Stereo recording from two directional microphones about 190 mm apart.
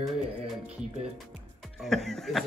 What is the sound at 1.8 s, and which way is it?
Speech, centre (ahead or behind).